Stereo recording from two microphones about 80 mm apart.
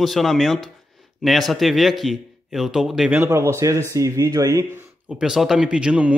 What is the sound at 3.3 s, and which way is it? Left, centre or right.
Speech, right.